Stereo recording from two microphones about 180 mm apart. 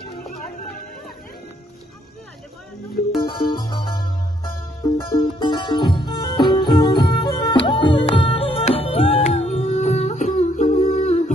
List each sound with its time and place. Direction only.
3.2 s music: 25° left (ahead or behind)